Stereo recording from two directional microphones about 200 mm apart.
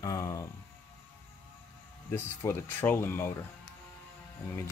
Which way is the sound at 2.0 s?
10° left (ahead or behind).